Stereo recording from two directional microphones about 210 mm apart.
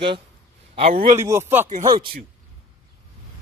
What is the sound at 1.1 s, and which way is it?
Speech, 10° right (ahead or behind).